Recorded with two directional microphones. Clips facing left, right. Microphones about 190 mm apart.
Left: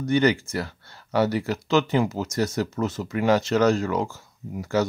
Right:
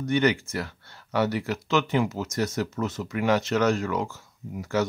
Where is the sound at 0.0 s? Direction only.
35° left (ahead or behind).